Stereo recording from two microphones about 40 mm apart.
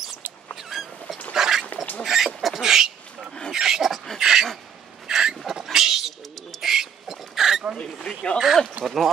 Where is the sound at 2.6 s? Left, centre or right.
Centre.